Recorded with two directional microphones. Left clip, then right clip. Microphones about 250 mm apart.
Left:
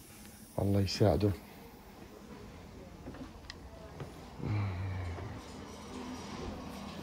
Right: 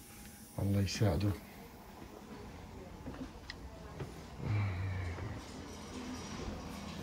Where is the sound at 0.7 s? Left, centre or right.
Left.